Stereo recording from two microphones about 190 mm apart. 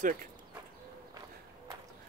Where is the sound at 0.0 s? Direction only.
45° right (ahead or behind).